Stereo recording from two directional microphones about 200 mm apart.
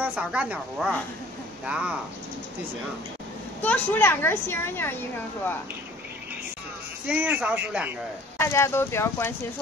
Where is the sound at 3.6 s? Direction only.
10° left (ahead or behind).